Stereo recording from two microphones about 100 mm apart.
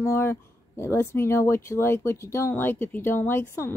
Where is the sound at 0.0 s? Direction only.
25° left (ahead or behind).